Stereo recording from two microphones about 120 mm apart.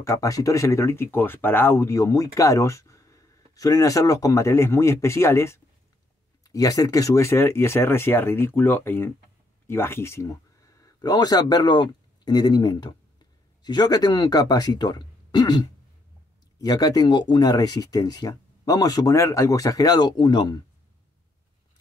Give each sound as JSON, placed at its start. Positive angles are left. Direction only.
{"t": 0.0, "sound": "speech", "side_deg": 30}